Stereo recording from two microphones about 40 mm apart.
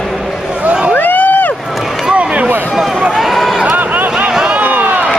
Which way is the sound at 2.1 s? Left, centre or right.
Right.